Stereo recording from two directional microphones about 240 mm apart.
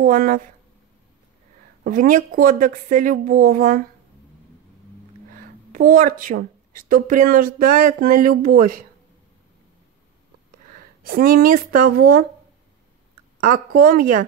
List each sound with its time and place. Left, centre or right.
0.0 s a woman's voice: right
1.9 s a woman's voice: right
5.3 s speech: right
10.5 s speech: right
13.4 s a woman's voice: right